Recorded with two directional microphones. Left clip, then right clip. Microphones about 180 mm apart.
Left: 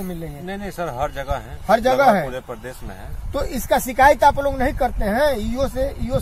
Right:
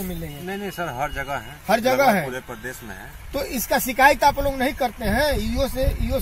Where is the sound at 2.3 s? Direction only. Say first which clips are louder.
Left 2 dB; 25° left (ahead or behind).